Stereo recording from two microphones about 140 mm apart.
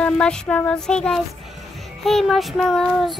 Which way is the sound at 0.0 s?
10° left (ahead or behind).